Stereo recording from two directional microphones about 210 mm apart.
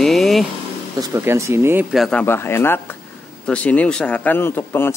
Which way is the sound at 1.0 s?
10° right (ahead or behind).